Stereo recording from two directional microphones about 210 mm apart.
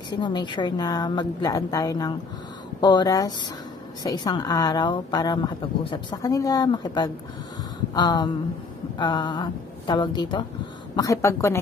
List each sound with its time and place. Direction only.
0.1 s a woman's voice: 20° left (ahead or behind)